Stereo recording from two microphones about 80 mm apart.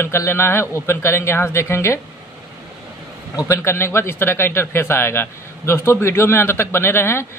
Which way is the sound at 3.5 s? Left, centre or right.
Left.